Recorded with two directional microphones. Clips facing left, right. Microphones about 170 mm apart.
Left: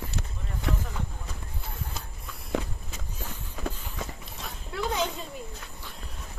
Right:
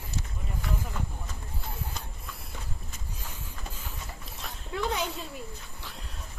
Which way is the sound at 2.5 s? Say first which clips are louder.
Left 18 dB; 90° left.